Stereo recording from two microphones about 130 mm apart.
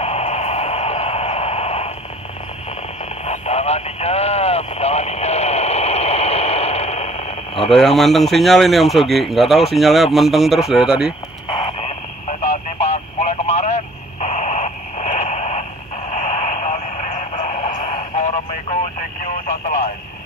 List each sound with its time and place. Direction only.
0.0 s a sound: 55° left (ahead or behind)
3.3 s radio: 55° left (ahead or behind)
7.7 s speech: centre (ahead or behind)
12.3 s a sound: 65° left (ahead or behind)
13.2 s radio: 60° left (ahead or behind)
19.4 s radio: 90° left